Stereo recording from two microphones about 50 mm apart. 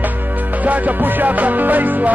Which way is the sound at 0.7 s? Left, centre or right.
Right.